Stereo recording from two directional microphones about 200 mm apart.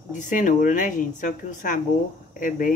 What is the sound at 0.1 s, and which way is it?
Speech, 40° left (ahead or behind).